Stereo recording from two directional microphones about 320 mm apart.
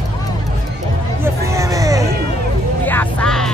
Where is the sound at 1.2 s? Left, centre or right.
Centre.